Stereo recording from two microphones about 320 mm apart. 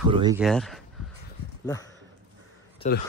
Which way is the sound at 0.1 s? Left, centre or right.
Centre.